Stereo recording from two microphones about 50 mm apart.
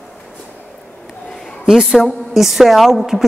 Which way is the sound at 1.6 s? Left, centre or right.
Centre.